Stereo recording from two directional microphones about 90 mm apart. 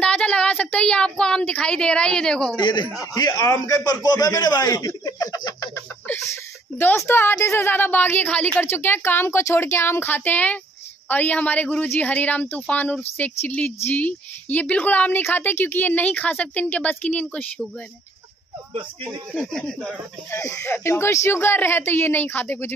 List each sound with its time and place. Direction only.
0.0 s child singing: 15° left (ahead or behind)
2.6 s a man's voice: 55° left (ahead or behind)
2.9 s speech: 40° left (ahead or behind)
6.1 s chicken: 20° left (ahead or behind)
7.1 s a woman's voice: 25° left (ahead or behind)
19.0 s speech: 5° left (ahead or behind)
20.2 s a woman's voice: 30° left (ahead or behind)